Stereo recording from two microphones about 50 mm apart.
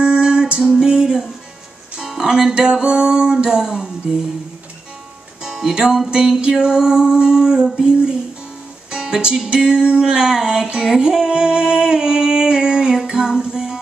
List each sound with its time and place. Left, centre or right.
0.0 s music: centre
5.4 s music: centre